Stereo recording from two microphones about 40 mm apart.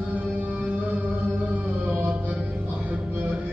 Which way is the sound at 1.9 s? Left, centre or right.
Right.